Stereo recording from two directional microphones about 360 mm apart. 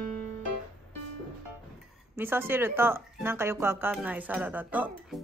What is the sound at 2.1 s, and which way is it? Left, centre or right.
Speech, centre.